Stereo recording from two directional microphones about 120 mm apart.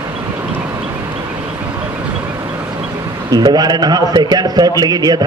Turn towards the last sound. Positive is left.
turn(degrees=-35)  # may be behind; listen again after turning